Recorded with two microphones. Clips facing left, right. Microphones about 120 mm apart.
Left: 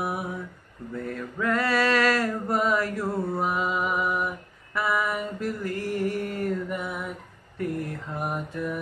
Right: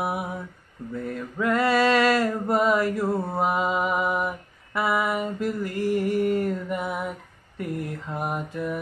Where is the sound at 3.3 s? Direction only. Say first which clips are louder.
Right 3 dB; 20° right (ahead or behind).